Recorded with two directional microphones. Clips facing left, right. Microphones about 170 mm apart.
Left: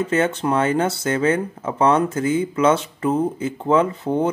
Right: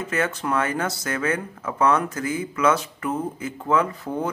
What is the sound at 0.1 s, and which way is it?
Speech, 25° left (ahead or behind).